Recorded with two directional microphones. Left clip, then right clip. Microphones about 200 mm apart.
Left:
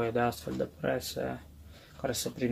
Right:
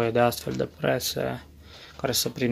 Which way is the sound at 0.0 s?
40° right (ahead or behind).